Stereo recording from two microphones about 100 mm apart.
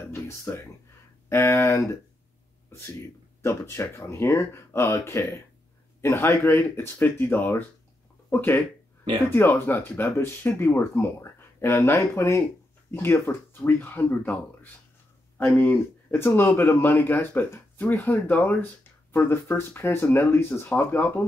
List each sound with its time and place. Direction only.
0.1 s speech: 30° left (ahead or behind)
3.4 s speech: 25° left (ahead or behind)